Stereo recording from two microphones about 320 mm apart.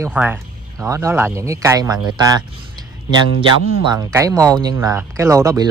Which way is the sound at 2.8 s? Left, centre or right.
Centre.